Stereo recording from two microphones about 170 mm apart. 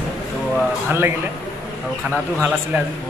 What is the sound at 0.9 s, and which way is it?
Speech, 15° right (ahead or behind).